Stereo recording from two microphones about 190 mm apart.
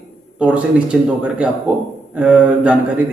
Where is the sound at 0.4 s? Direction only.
5° right (ahead or behind).